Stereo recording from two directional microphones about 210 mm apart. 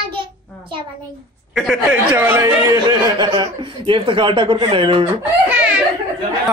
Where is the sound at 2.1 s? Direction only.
15° right (ahead or behind).